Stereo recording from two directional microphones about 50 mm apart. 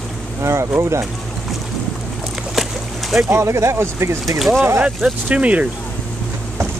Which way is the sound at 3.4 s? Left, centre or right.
Right.